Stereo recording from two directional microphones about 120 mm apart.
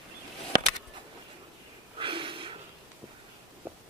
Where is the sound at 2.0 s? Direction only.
45° right (ahead or behind).